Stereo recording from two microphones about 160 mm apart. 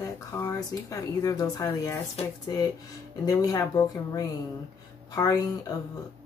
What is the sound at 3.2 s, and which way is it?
Speech, 25° left (ahead or behind).